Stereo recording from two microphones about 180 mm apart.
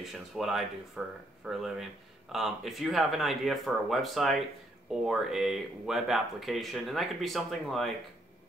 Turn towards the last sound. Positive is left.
turn(degrees=0)  # may be behind; listen again after turning